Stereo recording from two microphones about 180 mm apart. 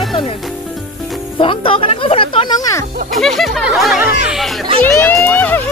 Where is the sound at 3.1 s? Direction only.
Centre (ahead or behind).